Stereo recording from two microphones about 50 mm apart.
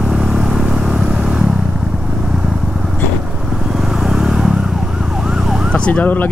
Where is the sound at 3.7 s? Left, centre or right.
Centre.